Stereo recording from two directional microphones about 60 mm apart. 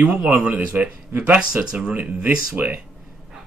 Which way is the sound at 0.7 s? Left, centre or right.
Right.